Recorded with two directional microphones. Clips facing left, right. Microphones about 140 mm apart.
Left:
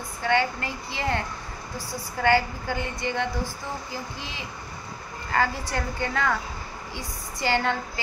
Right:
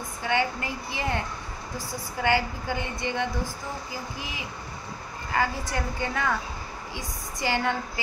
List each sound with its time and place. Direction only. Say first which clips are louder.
0.2 s a woman's voice: left 2 dB; 15° right (ahead or behind)
2.2 s a woman's voice: left 3 dB; 15° right (ahead or behind)